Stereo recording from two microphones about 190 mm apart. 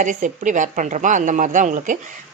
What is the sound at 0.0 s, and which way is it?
A woman's voice, 40° right (ahead or behind).